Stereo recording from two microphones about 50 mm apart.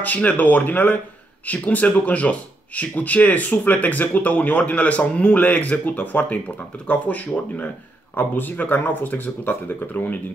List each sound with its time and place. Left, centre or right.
0.0 s speech: left